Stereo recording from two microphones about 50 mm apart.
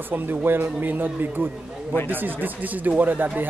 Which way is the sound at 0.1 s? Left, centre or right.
Right.